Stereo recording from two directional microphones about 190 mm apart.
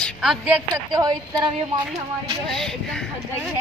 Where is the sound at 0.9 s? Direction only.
20° right (ahead or behind).